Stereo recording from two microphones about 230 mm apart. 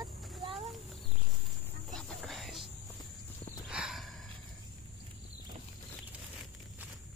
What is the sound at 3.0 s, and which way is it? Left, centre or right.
Clip-clop, centre.